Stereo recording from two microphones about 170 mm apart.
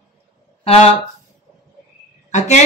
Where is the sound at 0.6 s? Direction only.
35° left (ahead or behind).